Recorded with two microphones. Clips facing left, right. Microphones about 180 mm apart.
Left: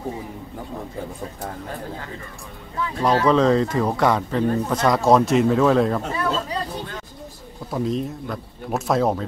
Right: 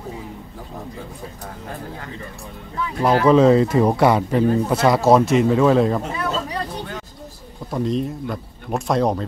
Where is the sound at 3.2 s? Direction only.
10° right (ahead or behind).